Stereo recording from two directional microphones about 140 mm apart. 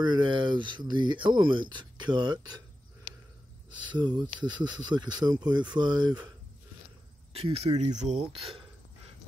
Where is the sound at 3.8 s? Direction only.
35° right (ahead or behind).